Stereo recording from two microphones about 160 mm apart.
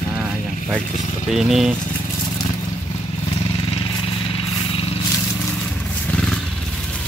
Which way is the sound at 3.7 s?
35° left (ahead or behind).